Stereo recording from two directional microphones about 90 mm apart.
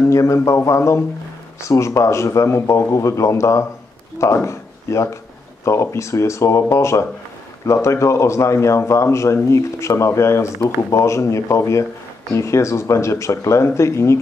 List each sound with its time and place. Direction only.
0.0 s a man's voice: 35° left (ahead or behind)